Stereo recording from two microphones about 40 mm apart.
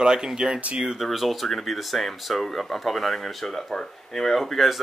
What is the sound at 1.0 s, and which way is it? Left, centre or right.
Speech, centre.